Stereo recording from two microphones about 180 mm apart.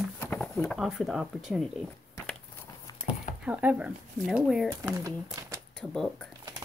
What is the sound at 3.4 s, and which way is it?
Speech, 10° right (ahead or behind).